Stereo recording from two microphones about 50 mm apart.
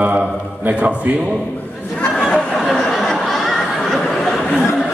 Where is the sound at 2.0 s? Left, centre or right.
Centre.